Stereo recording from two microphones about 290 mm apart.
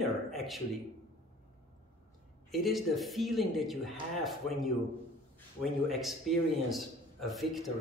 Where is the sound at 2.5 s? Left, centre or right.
Centre.